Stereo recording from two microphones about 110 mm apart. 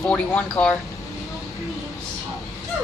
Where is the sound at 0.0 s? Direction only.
15° left (ahead or behind).